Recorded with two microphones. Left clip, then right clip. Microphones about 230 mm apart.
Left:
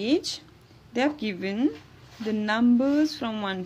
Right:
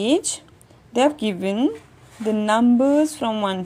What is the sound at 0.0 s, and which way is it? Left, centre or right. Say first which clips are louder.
Speech: right 5 dB; centre.